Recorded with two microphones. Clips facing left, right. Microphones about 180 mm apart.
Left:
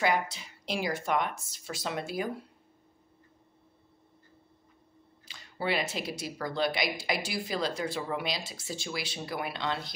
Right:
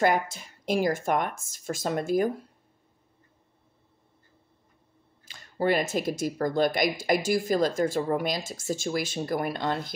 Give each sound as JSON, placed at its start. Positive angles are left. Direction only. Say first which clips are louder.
{"t": 0.0, "sound": "speech", "louder": "right 4 dB", "side_deg": -50}
{"t": 5.2, "sound": "speech", "louder": "right 7 dB", "side_deg": -45}